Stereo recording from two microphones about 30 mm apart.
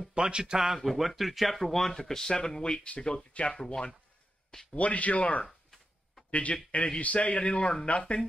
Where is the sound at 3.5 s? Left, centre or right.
Left.